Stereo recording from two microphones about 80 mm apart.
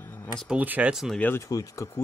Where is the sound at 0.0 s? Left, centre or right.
Left.